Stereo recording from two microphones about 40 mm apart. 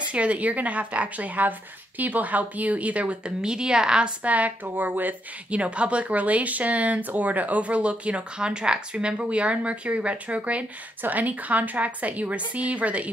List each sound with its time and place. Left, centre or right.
0.1 s speech: right
3.3 s a woman's voice: centre
4.2 s speech: right
5.5 s speech: right
11.0 s speech: right